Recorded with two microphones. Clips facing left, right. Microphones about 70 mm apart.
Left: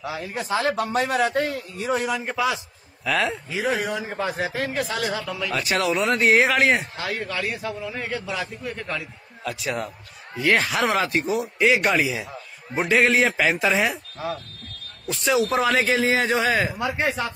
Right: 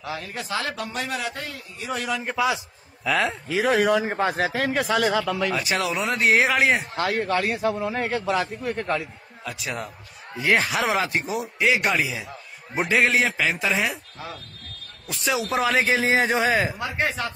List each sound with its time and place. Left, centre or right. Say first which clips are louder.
0.0 s speech: left 2 dB; centre
0.4 s speech: left 5 dB; left
0.7 s a man's voice: left 7 dB; left
2.0 s speech: even; centre
2.2 s a man's voice: right 1 dB; centre
3.4 s speech: right 5 dB; right
4.1 s a man's voice: right 3 dB; right
4.6 s speech: right 4 dB; right
5.5 s a man's voice: left 2 dB; centre
7.0 s a man's voice: right 5 dB; right
9.4 s a man's voice: left 4 dB; centre
16.1 s a man's voice: even; centre
16.7 s speech: left 2 dB; centre